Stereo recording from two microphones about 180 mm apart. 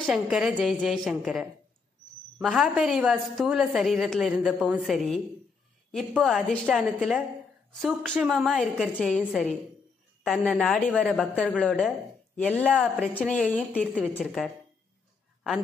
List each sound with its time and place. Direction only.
0.0 s a woman's voice: centre (ahead or behind)